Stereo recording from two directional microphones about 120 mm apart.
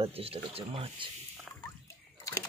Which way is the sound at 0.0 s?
55° right (ahead or behind).